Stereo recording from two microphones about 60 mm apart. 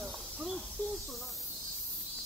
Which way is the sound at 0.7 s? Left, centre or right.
Centre.